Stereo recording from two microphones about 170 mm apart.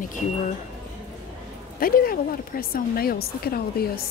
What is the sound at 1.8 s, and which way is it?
A woman's voice, 60° left (ahead or behind).